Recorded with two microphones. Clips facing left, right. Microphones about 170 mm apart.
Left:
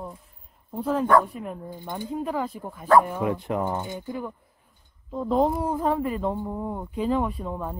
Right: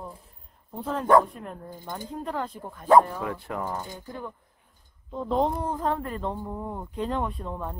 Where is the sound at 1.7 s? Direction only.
15° left (ahead or behind).